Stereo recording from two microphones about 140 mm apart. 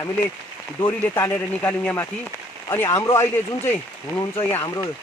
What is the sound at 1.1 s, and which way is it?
Speech, 15° left (ahead or behind).